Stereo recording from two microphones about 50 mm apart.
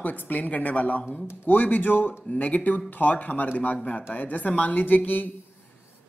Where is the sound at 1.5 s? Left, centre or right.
Left.